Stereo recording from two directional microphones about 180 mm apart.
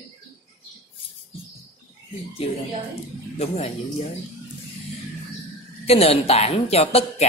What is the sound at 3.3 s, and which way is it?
Speech, 35° left (ahead or behind).